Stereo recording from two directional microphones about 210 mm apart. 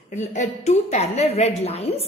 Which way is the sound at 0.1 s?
35° left (ahead or behind).